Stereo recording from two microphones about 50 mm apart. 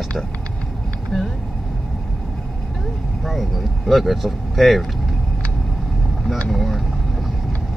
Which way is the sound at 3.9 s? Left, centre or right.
Centre.